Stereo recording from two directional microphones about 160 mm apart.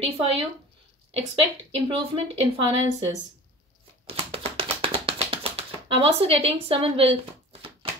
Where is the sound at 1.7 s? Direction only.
35° right (ahead or behind).